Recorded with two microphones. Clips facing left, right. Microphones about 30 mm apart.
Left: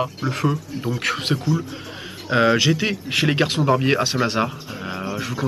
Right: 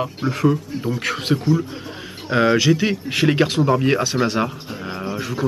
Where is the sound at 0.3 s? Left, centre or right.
Centre.